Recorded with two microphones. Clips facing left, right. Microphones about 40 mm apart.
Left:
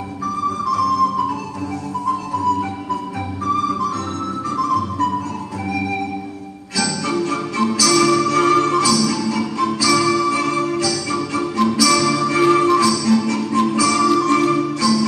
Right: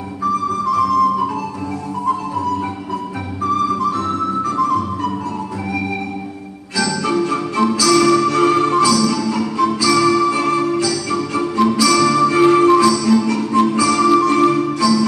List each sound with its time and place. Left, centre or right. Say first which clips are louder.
4.6 s music: right 1 dB; right
7.2 s music: right 3 dB; centre
9.3 s music: right 3 dB; centre
12.3 s music: right 2 dB; centre